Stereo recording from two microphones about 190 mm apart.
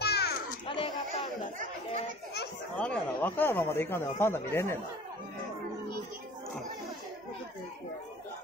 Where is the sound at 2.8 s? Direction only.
5° left (ahead or behind).